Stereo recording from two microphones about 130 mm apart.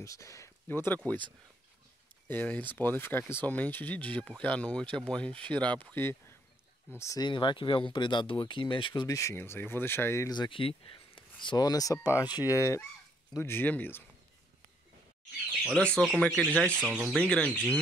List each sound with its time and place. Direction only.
0.0 s speech: 25° left (ahead or behind)
2.2 s speech: 15° left (ahead or behind)
7.0 s fowl: 25° left (ahead or behind)
7.2 s speech: 40° left (ahead or behind); by 10.3 s 20° left (ahead or behind)
10.3 s speech: 40° left (ahead or behind)
12.3 s fowl: 30° left (ahead or behind)
13.4 s speech: 15° left (ahead or behind)
16.3 s speech: 5° left (ahead or behind)
16.9 s speech: 10° right (ahead or behind)
17.2 s speech: 5° left (ahead or behind)